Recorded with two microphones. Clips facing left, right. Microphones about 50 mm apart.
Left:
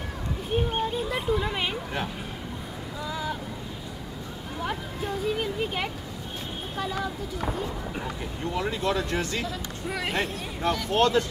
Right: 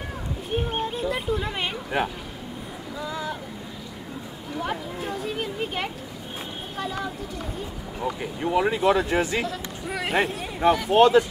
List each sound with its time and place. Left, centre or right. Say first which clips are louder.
0.6 s a sound: even; centre
3.1 s boat: even; centre
4.6 s speech: right 2 dB; centre
8.2 s speech: right 8 dB; centre
9.5 s speech: right 1 dB; centre